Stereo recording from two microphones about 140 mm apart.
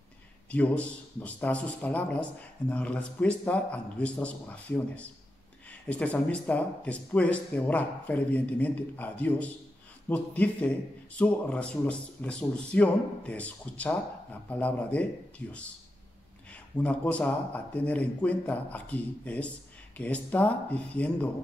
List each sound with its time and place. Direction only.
0.5 s a man's voice: 10° left (ahead or behind)
16.7 s a man's voice: 10° left (ahead or behind)